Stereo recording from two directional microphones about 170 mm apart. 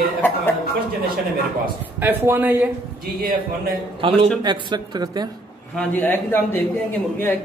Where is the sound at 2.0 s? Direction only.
15° right (ahead or behind).